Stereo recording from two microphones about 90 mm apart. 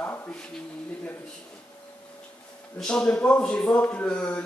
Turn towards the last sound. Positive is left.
turn(degrees=15)  # may be behind; listen again after turning